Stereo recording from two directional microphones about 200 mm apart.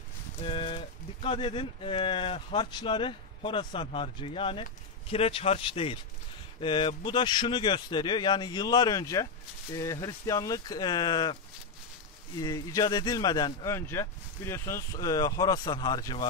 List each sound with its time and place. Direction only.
0.4 s speech: 25° left (ahead or behind)
12.4 s speech: 20° left (ahead or behind)